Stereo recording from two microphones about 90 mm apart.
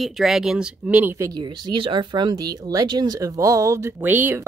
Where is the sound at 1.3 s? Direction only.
55° right (ahead or behind); by 4.0 s 30° right (ahead or behind).